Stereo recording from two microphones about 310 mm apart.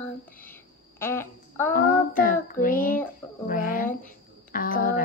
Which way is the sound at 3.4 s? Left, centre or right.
Left.